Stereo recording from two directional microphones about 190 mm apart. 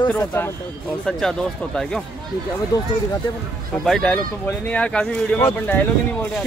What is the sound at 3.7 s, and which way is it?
Speech, 5° left (ahead or behind).